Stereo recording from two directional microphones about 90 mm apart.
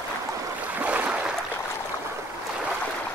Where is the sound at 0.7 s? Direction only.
15° right (ahead or behind).